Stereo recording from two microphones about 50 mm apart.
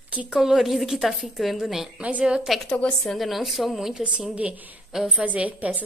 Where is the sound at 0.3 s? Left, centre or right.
Centre.